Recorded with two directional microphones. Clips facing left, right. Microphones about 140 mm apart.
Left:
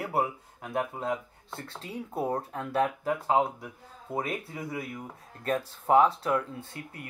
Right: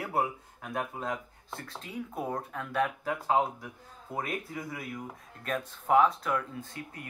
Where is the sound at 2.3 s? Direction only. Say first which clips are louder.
Left 1 dB; 30° left (ahead or behind).